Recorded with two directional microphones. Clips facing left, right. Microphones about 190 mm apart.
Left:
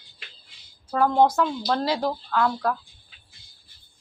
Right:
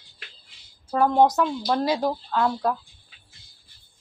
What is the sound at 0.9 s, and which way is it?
A woman's voice, 20° right (ahead or behind).